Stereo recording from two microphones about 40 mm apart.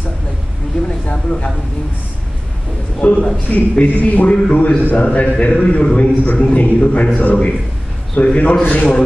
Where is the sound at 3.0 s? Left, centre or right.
Left.